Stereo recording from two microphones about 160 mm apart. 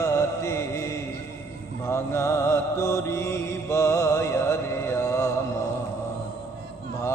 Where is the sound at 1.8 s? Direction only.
15° left (ahead or behind).